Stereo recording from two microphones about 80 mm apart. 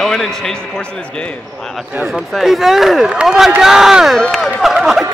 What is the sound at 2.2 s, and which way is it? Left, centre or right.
Speech, centre.